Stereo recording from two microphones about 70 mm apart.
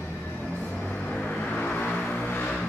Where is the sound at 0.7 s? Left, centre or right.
Centre.